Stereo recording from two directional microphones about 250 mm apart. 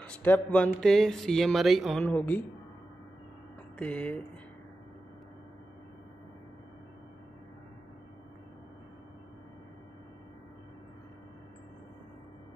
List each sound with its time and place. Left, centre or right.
0.0 s speech: centre
3.7 s speech: centre